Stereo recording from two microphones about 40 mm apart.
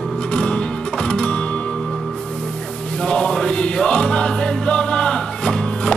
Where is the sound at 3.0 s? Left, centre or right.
Left.